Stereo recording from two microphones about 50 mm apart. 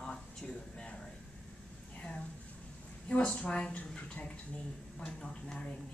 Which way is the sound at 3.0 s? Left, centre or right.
Centre.